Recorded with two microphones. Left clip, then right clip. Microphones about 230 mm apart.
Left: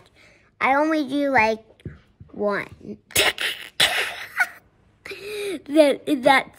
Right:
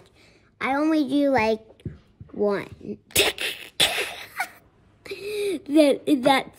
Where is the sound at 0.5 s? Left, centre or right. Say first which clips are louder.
Left 5 dB; centre.